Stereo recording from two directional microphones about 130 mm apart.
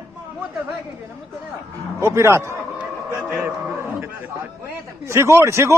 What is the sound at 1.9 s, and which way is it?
Speech, 20° right (ahead or behind).